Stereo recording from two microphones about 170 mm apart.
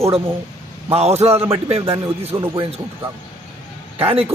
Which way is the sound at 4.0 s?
35° right (ahead or behind).